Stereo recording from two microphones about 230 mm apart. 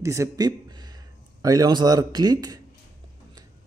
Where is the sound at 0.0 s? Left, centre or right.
Centre.